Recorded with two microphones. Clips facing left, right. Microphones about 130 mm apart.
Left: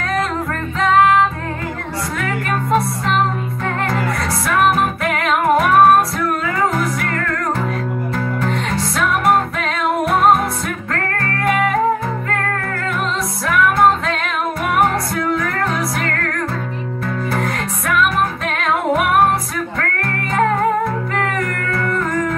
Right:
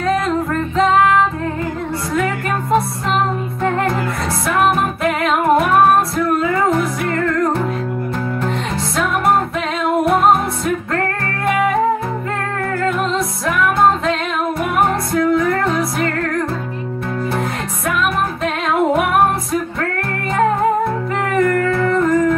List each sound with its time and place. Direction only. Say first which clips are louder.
3.6 s music: right 3 dB; 25° right (ahead or behind)
8.5 s music: left 1 dB; 25° right (ahead or behind)
13.5 s music: left 1 dB; 25° right (ahead or behind)
15.3 s music: right 4 dB; 25° right (ahead or behind)
17.3 s music: even; 25° right (ahead or behind)
21.1 s music: right 5 dB; 25° right (ahead or behind)